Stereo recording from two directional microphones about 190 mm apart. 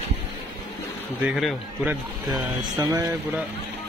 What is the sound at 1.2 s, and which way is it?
Speech, 5° right (ahead or behind).